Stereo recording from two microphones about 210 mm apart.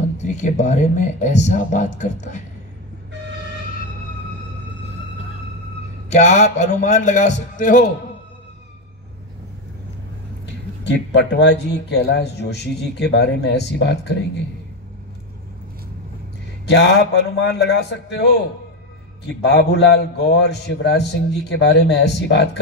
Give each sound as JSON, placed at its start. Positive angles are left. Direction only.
{"t": 0.2, "sound": "speech", "side_deg": 35}
{"t": 6.0, "sound": "speech", "side_deg": 35}
{"t": 10.4, "sound": "speech", "side_deg": 60}
{"t": 16.6, "sound": "speech", "side_deg": 55}
{"t": 19.4, "sound": "a man's voice", "side_deg": 55}